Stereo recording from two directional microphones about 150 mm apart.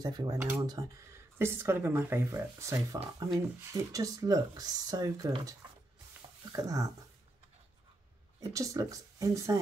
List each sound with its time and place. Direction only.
0.0 s speech: 25° right (ahead or behind)
1.4 s speech: 15° right (ahead or behind)
8.4 s speech: 20° right (ahead or behind)